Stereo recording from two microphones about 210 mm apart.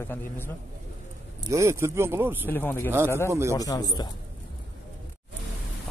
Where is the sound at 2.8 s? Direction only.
10° right (ahead or behind).